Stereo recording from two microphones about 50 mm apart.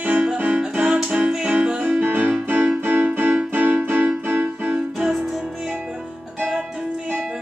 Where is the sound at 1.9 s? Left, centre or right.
Right.